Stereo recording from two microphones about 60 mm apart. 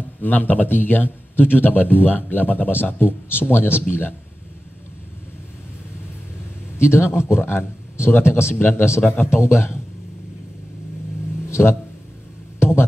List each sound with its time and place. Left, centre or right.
0.2 s speech: left
6.8 s speech: left
11.4 s a sound: left